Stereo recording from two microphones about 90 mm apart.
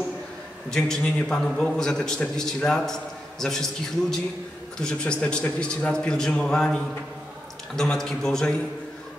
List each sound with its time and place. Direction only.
0.7 s a man's voice: 5° left (ahead or behind)
4.7 s a man's voice: 10° left (ahead or behind)